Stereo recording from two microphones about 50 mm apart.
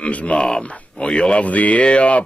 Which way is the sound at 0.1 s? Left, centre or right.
Left.